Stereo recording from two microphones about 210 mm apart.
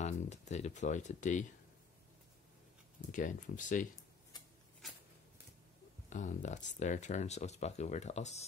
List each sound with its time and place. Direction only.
0.0 s speech: 30° left (ahead or behind)
3.1 s speech: 35° left (ahead or behind)
6.0 s speech: 35° left (ahead or behind)